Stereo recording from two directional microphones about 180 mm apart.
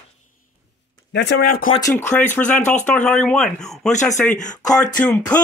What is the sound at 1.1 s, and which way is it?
Speech, 75° left (ahead or behind).